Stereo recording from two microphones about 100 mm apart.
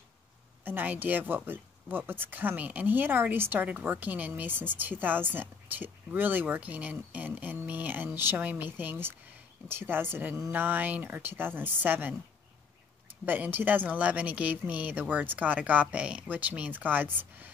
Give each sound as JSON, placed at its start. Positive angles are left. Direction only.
{"t": 0.7, "sound": "speech", "side_deg": -20}
{"t": 13.2, "sound": "speech", "side_deg": -20}